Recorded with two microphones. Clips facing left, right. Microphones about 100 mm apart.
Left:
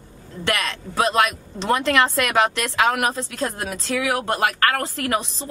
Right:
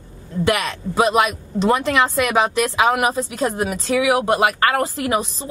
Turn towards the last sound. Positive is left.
turn(degrees=-10)  # may be behind; listen again after turning